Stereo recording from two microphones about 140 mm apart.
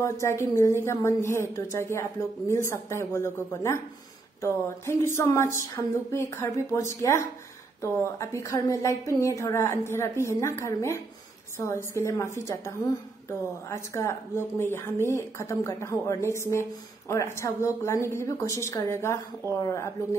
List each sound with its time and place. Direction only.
0.0 s a woman's voice: 20° left (ahead or behind)